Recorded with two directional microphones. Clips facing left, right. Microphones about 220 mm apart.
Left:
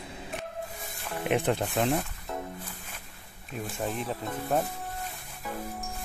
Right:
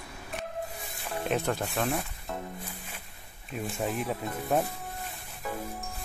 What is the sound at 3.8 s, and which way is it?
Speech, centre (ahead or behind).